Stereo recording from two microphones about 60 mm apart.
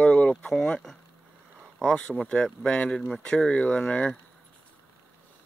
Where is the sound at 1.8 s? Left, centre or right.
Centre.